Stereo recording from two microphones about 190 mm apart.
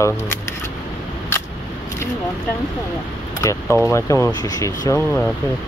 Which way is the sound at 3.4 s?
15° left (ahead or behind).